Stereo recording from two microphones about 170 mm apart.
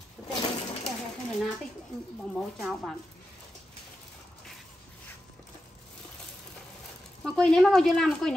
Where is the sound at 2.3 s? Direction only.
Centre (ahead or behind).